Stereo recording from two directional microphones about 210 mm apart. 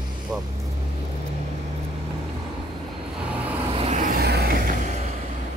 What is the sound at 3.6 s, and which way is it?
Vehicle, 30° right (ahead or behind).